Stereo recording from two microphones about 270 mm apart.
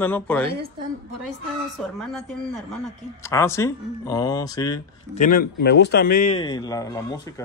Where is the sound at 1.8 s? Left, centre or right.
Centre.